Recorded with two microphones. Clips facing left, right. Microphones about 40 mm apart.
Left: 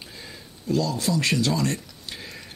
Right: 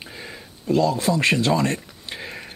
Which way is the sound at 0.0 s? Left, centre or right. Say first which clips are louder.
Right 4 dB; right.